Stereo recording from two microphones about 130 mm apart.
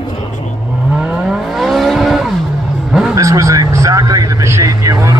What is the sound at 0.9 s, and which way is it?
Vehicle, 5° right (ahead or behind).